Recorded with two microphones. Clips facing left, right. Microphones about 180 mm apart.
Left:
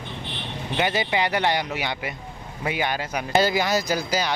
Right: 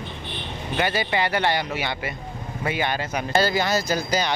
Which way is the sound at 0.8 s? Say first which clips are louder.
Even; 15° left (ahead or behind).